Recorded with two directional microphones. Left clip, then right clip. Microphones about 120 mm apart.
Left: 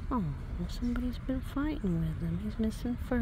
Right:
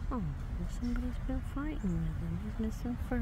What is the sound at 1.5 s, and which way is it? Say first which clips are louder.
Speech: left 6 dB; 25° left (ahead or behind).